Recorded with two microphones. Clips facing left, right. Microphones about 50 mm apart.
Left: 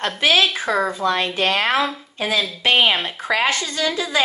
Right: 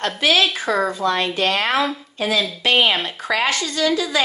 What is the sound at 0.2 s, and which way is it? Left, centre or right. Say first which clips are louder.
Speech: left 1 dB; left.